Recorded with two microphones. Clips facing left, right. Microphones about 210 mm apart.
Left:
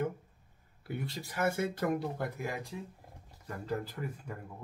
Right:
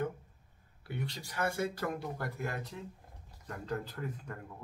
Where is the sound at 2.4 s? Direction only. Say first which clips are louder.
Left 1 dB; 10° left (ahead or behind).